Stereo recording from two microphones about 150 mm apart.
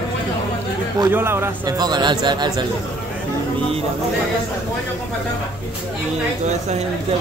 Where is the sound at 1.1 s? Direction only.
15° right (ahead or behind).